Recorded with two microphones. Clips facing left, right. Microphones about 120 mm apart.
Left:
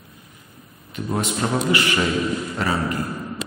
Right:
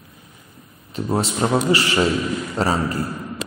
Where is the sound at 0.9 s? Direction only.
30° right (ahead or behind).